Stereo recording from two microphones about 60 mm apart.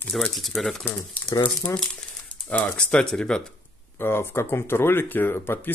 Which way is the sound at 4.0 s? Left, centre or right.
Left.